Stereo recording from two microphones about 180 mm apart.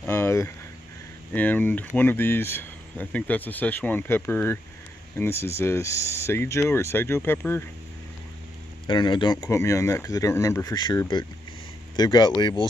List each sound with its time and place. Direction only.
0.0 s a sound: 15° left (ahead or behind)
1.3 s speech: 10° left (ahead or behind)
8.8 s speech: 25° left (ahead or behind)